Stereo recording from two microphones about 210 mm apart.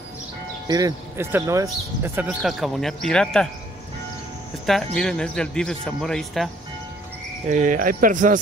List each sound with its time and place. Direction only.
0.7 s speech: 15° right (ahead or behind); by 3.4 s 5° left (ahead or behind)
4.6 s speech: centre (ahead or behind)
7.4 s speech: 35° right (ahead or behind)